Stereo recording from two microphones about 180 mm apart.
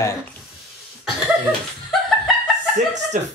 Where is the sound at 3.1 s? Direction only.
45° right (ahead or behind).